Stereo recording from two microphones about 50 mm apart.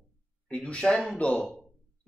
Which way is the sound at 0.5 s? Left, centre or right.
Left.